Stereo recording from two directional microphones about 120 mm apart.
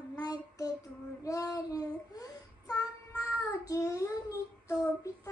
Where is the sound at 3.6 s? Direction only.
30° left (ahead or behind).